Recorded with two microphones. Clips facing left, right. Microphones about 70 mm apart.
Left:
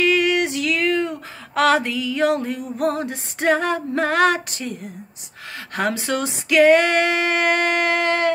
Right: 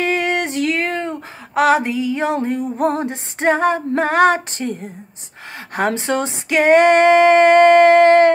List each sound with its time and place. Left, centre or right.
0.0 s music: right
1.5 s music: centre
5.8 s female singing: right